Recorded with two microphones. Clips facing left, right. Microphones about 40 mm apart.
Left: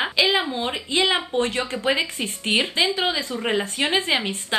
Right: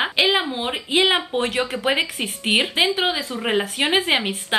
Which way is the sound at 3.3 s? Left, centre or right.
Centre.